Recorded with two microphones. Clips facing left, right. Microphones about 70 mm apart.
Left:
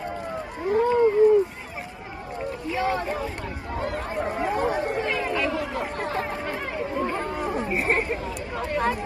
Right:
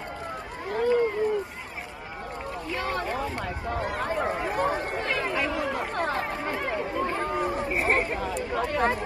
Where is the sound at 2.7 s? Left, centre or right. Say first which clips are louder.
Left 5 dB; centre.